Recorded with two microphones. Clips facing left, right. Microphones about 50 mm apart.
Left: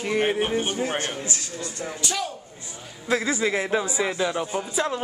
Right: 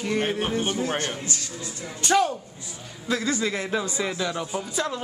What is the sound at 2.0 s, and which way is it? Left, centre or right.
Speech, right.